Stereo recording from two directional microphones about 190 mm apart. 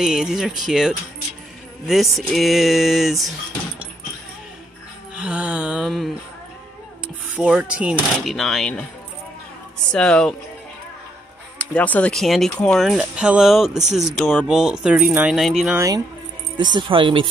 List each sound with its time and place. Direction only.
0.0 s speech: 5° right (ahead or behind)
5.1 s music: 5° right (ahead or behind)
7.3 s speech: 5° right (ahead or behind)
9.9 s speech: 5° left (ahead or behind)
11.5 s speech: 5° left (ahead or behind)
15.7 s speech: 15° right (ahead or behind)